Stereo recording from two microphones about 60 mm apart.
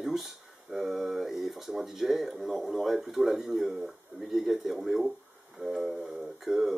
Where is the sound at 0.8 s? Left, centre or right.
Centre.